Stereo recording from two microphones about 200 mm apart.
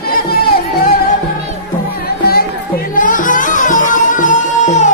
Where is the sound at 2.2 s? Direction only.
50° left (ahead or behind).